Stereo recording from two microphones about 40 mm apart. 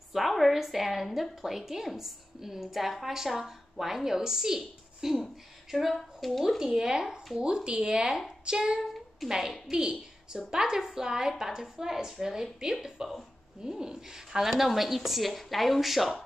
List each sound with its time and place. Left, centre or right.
0.1 s a woman's voice: centre
6.6 s a woman's voice: centre
8.8 s a sound: centre
9.3 s a woman's voice: centre